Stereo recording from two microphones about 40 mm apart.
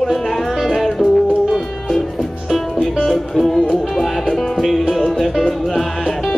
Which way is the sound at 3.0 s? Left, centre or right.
Centre.